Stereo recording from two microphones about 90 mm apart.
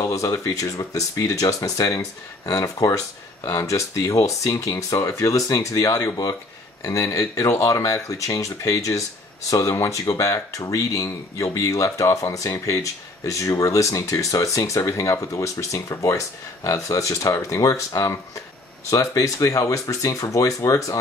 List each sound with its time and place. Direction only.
0.0 s speech: 40° left (ahead or behind)